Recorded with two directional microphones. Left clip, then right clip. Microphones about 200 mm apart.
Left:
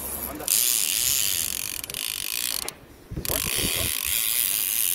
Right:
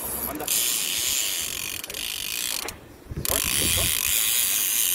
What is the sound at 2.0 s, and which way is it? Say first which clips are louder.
Ratchet: even; 15° left (ahead or behind).